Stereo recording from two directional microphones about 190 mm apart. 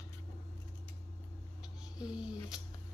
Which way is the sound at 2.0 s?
5° right (ahead or behind).